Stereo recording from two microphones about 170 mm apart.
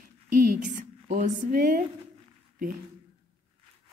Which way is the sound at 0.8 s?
50° right (ahead or behind).